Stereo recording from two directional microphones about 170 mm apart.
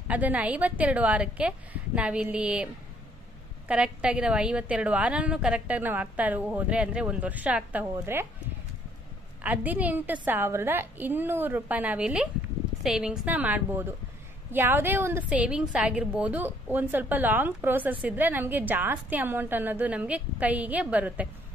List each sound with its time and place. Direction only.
0.1 s a woman's voice: 10° right (ahead or behind)
9.4 s a woman's voice: 10° right (ahead or behind)